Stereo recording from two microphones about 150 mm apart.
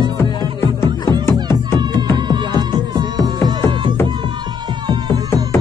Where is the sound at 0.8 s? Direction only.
15° left (ahead or behind).